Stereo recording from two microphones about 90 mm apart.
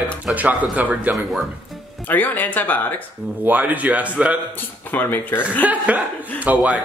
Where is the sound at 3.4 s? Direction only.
15° right (ahead or behind).